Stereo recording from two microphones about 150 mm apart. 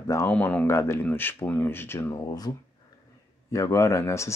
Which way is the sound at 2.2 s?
25° left (ahead or behind).